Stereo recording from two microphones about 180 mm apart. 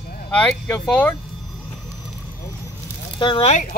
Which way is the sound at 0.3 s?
10° left (ahead or behind).